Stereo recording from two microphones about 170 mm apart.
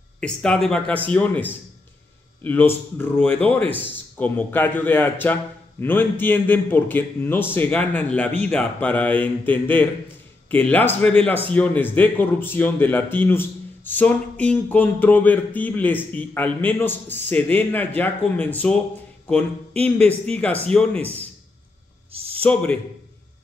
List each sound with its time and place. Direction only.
0.2 s a man's voice: 5° left (ahead or behind)
19.8 s a man's voice: 10° left (ahead or behind)
22.1 s a sound: 35° right (ahead or behind)
22.4 s a man's voice: 10° left (ahead or behind)